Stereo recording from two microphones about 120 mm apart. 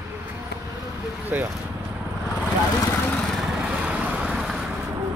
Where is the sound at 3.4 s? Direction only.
10° right (ahead or behind).